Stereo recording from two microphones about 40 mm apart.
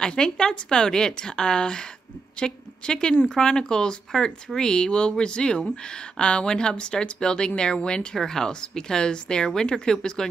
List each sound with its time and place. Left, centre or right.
0.0 s a woman's voice: centre